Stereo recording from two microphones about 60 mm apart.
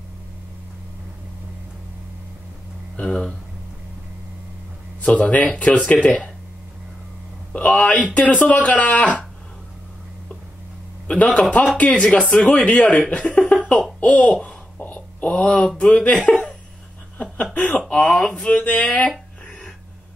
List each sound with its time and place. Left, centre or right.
3.0 s a sound: centre
5.0 s speech: left
7.5 s speech: left
11.1 s a man's voice: left
14.4 s a sound: left
15.8 s speech: centre
16.3 s laughter: left
17.6 s speech: left
17.9 s a sound: centre